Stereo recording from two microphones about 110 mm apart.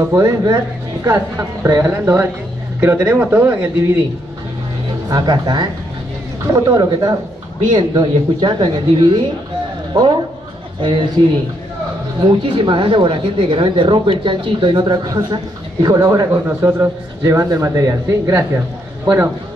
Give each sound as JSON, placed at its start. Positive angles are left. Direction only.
{"t": 0.1, "sound": "a woman's voice", "side_deg": -30}
{"t": 5.0, "sound": "speech", "side_deg": -40}
{"t": 10.8, "sound": "speech", "side_deg": -45}
{"t": 12.2, "sound": "a woman's voice", "side_deg": -45}